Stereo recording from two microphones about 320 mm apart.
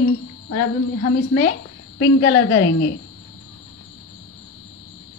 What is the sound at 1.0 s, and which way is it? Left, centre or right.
A woman's voice, left.